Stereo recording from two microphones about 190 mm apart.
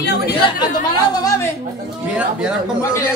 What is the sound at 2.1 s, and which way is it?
Speech, 5° right (ahead or behind).